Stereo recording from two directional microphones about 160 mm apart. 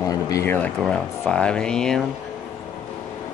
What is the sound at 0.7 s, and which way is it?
Speech, centre (ahead or behind).